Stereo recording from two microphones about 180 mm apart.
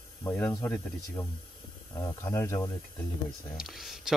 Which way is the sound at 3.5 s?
Centre (ahead or behind).